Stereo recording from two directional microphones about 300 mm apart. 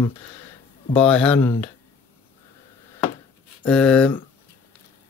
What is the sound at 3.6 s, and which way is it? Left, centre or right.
Speech, centre.